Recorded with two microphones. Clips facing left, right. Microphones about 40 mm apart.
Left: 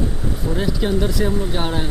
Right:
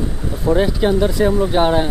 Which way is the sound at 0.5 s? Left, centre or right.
Centre.